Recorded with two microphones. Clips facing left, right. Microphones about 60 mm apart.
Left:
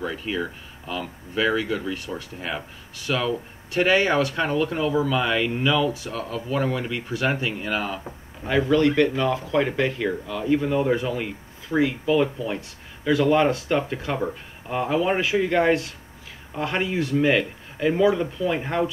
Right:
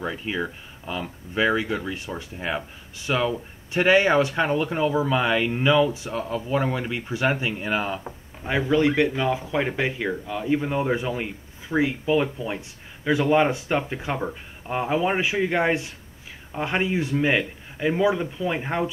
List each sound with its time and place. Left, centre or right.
0.0 s speech: centre